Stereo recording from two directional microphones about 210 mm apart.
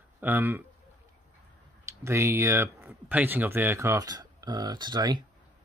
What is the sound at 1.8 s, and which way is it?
Speech, 10° right (ahead or behind).